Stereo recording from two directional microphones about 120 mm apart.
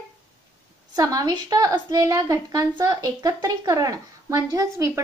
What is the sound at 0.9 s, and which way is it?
A woman's voice, 30° right (ahead or behind).